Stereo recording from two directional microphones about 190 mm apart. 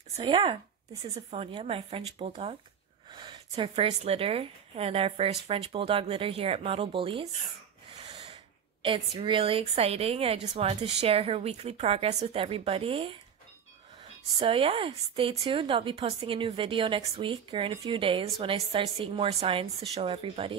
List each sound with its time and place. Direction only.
0.2 s a woman's voice: 25° right (ahead or behind)
8.8 s a woman's voice: 25° right (ahead or behind)
14.4 s speech: 30° right (ahead or behind)